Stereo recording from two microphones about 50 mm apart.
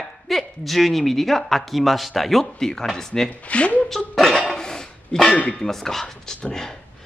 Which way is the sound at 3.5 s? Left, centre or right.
Left.